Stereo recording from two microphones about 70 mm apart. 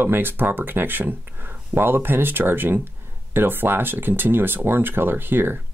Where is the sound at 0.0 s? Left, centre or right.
Right.